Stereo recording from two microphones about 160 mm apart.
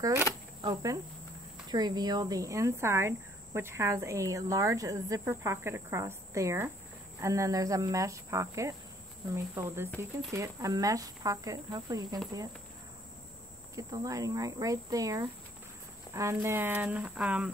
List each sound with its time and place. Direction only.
0.3 s insect: 25° right (ahead or behind)
1.7 s speech: 25° right (ahead or behind)
13.7 s speech: 20° right (ahead or behind)